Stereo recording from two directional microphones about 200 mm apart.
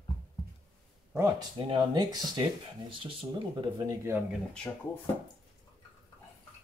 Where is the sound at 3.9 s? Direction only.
10° right (ahead or behind).